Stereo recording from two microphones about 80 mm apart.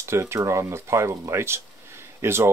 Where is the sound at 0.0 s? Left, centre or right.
Right.